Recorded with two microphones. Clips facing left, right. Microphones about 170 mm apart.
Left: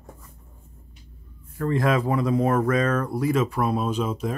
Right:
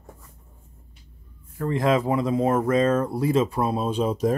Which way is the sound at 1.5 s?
20° right (ahead or behind).